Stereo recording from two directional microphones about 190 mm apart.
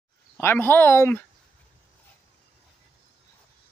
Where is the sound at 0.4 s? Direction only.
10° left (ahead or behind).